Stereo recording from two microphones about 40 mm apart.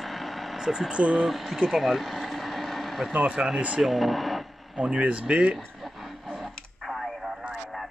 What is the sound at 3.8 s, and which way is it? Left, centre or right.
Radio, centre.